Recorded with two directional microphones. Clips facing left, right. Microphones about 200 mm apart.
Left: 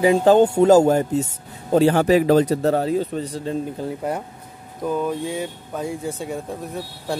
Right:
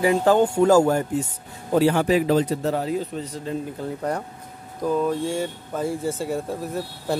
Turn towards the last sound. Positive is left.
turn(degrees=0)  # may be behind; listen again after turning